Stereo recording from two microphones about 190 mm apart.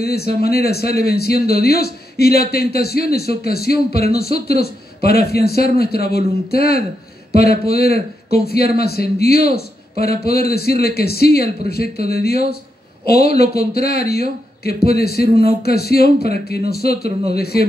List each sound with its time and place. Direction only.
0.0 s a man's voice: 55° left (ahead or behind)